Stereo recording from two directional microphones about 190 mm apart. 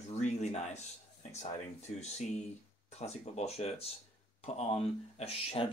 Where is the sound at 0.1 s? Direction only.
35° left (ahead or behind).